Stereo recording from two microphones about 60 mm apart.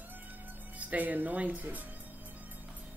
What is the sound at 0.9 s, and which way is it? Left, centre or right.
Speech, right.